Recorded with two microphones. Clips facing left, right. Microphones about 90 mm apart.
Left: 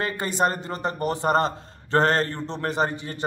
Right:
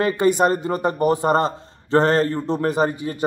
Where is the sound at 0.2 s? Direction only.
15° right (ahead or behind).